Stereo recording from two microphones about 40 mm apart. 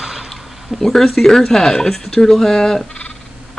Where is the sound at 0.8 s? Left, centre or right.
Centre.